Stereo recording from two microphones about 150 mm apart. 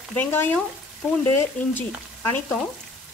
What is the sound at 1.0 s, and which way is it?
Speech, centre (ahead or behind).